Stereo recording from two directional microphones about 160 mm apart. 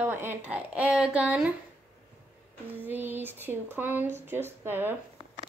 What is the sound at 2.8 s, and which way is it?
Speech, 10° right (ahead or behind).